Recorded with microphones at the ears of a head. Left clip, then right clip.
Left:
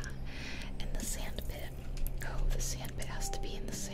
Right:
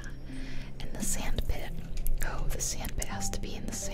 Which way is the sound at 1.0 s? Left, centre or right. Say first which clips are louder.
Right 8 dB; right.